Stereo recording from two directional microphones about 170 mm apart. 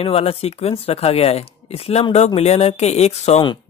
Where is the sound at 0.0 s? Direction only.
35° left (ahead or behind).